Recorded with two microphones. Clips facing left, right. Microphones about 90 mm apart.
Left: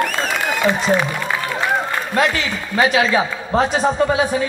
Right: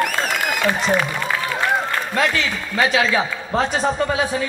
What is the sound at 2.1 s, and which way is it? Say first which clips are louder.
A man's voice: left 3 dB; 25° left (ahead or behind).